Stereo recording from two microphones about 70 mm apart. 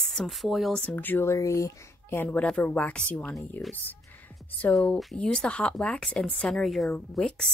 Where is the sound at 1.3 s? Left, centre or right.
Left.